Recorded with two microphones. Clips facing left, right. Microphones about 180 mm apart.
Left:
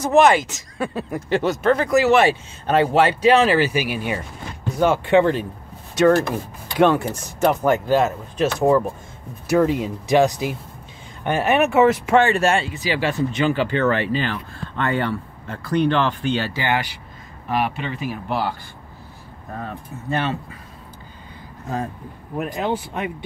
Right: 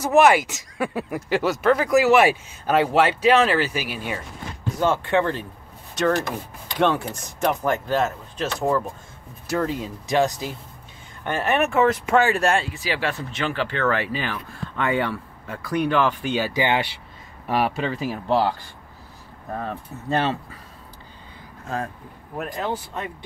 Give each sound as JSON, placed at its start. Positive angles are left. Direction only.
{"t": 0.0, "sound": "speech", "side_deg": -10}
{"t": 4.7, "sound": "speech", "side_deg": 15}
{"t": 20.1, "sound": "speech", "side_deg": -30}
{"t": 22.6, "sound": "speech", "side_deg": 20}